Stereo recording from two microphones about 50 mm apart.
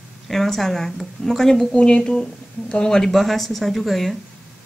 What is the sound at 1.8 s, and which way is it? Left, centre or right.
A woman's voice, centre.